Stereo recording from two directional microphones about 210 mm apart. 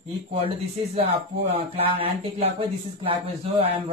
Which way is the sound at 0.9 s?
25° right (ahead or behind).